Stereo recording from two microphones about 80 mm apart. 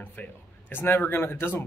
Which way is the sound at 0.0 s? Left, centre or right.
Left.